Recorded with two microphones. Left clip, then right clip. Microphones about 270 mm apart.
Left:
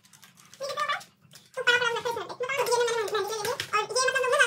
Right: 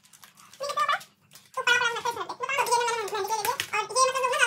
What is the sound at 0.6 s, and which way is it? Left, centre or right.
Cat, centre.